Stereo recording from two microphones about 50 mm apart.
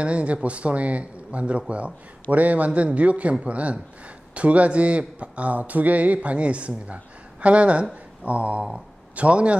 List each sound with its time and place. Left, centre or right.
0.0 s a man's voice: right